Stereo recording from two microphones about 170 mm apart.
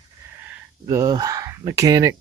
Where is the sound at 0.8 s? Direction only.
20° right (ahead or behind).